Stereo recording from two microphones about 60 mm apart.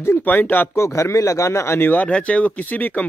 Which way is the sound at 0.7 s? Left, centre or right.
Left.